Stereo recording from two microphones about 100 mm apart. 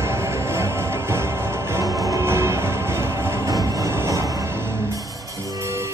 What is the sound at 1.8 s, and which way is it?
Music, 30° right (ahead or behind).